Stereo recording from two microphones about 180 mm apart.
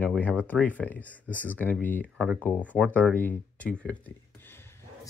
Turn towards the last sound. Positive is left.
turn(degrees=15)  # may be behind; listen again after turning